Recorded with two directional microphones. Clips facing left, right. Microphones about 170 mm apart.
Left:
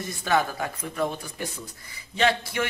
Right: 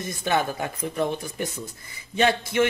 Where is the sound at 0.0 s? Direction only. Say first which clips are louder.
Even; 20° right (ahead or behind).